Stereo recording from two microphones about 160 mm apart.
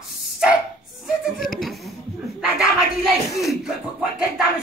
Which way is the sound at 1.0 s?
Centre (ahead or behind).